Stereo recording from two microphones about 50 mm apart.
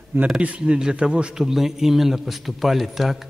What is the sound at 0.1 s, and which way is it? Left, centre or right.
Speech, right.